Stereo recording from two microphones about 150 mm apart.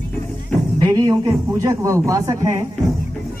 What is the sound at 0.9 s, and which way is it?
Speech, 25° right (ahead or behind).